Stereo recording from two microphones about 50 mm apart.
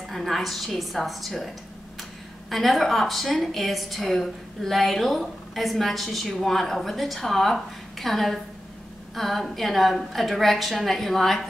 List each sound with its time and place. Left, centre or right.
0.1 s a woman's voice: centre
2.5 s a woman's voice: centre